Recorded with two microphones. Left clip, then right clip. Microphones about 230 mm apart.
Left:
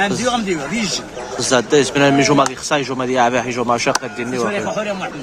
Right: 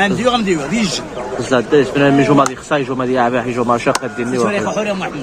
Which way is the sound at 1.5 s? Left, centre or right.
Centre.